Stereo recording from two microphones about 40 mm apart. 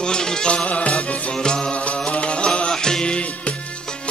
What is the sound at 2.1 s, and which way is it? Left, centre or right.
Music, left.